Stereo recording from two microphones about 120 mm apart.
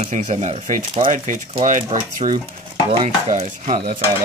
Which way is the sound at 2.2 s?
70° right (ahead or behind).